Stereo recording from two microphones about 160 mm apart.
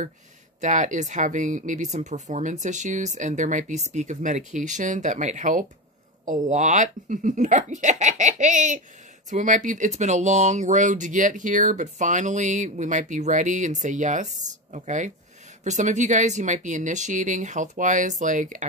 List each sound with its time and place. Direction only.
0.6 s speech: 50° right (ahead or behind)